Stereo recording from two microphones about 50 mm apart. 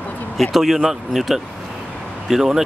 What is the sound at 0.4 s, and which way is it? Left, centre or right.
Speech, centre.